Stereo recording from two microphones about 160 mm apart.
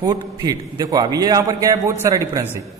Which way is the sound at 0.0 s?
25° right (ahead or behind).